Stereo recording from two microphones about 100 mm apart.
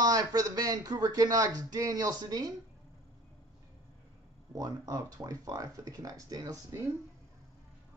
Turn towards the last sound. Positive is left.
turn(degrees=-35)  # may be behind; listen again after turning